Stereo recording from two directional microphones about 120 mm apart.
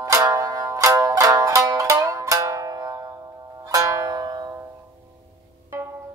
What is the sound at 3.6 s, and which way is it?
Zither, 30° right (ahead or behind).